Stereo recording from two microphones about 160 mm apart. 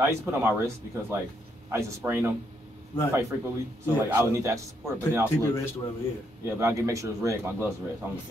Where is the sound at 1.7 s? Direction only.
15° right (ahead or behind).